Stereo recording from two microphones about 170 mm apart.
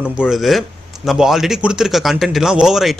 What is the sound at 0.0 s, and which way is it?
Speech, 5° right (ahead or behind).